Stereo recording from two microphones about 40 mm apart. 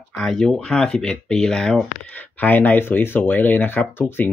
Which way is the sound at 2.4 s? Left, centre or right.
Left.